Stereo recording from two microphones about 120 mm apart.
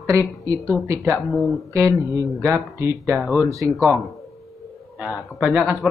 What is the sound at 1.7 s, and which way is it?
Speech, 25° right (ahead or behind).